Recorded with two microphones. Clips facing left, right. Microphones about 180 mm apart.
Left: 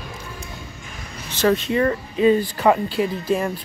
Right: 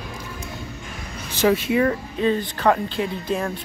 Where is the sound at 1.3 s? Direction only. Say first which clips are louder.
Even; 10° right (ahead or behind).